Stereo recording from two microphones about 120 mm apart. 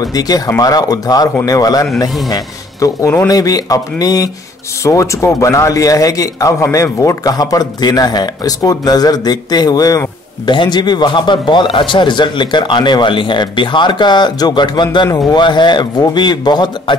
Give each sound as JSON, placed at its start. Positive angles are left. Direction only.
{"t": 0.0, "sound": "speech", "side_deg": 30}